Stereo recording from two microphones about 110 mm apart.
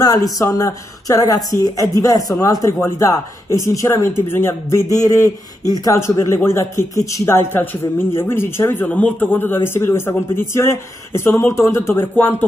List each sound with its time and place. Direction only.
0.0 s a man's voice: 35° left (ahead or behind)